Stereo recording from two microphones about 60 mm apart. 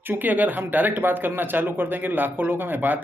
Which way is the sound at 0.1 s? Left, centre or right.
Right.